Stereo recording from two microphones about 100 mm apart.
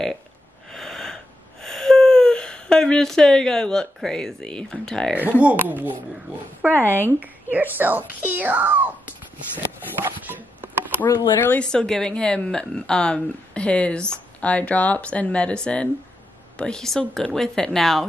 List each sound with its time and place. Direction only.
0.7 s wheeze: 5° left (ahead or behind)
5.4 s a child's voice: 15° right (ahead or behind)
6.7 s speech: 20° left (ahead or behind)
7.0 s a child's voice: 20° right (ahead or behind)
10.0 s chopping: 20° right (ahead or behind)
11.0 s speech: 15° left (ahead or behind)